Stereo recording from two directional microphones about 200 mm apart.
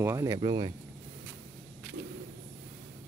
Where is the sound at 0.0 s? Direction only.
15° right (ahead or behind).